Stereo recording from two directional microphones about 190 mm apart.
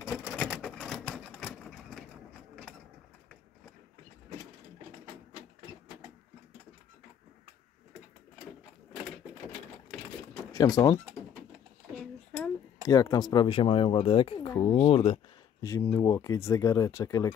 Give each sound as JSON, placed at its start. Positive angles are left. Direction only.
{"t": 0.5, "sound": "vehicle", "side_deg": 0}
{"t": 10.5, "sound": "speech", "side_deg": 20}
{"t": 12.8, "sound": "speech", "side_deg": 20}
{"t": 15.6, "sound": "speech", "side_deg": 15}